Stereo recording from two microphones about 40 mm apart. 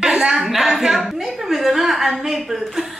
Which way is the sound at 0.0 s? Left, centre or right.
Centre.